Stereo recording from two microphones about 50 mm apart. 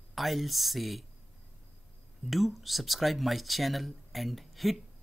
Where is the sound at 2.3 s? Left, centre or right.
Centre.